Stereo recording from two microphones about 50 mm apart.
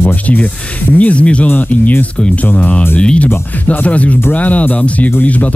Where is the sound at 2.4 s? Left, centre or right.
Left.